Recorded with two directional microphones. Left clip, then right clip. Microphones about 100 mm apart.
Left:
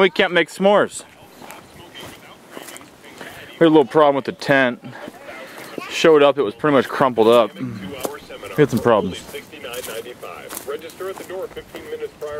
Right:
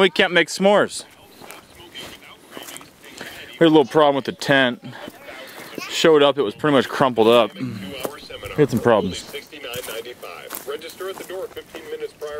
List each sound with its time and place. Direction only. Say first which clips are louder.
0.0 s speech: even; 35° right (ahead or behind)
2.5 s a sound: even; 5° right (ahead or behind)
3.2 s a sound: left 1 dB; 25° right (ahead or behind)
4.0 s speech: left 2 dB; 30° right (ahead or behind)
9.8 s bird: left 1 dB; 40° right (ahead or behind)
10.7 s speech: left 1 dB; 50° right (ahead or behind)